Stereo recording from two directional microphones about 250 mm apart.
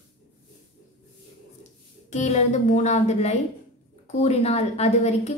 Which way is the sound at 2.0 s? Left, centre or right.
Left.